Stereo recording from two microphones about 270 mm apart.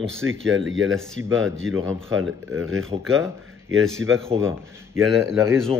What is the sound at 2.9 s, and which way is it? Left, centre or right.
Speech, centre.